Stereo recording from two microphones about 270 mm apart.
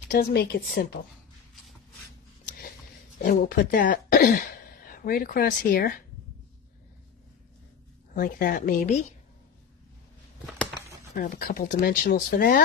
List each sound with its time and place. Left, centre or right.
0.1 s speech: left
3.2 s speech: left
8.1 s speech: left
11.1 s speech: left